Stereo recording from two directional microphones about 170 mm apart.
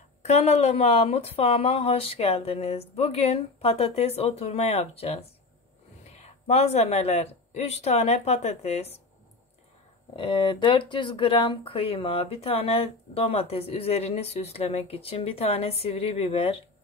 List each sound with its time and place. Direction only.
0.2 s speech: 40° left (ahead or behind)
10.1 s speech: 30° left (ahead or behind)